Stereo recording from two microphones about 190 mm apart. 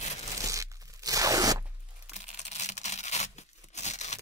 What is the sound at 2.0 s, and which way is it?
Tearing, 40° left (ahead or behind).